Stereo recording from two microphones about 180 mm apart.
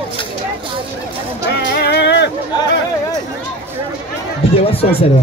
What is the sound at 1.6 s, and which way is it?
Music, 65° left (ahead or behind).